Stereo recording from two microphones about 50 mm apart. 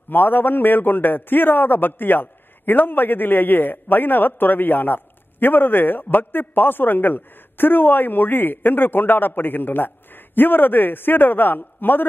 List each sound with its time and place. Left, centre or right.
0.1 s a man's voice: left